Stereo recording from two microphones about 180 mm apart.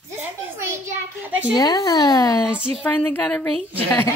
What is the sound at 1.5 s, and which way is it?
Speech, 20° left (ahead or behind).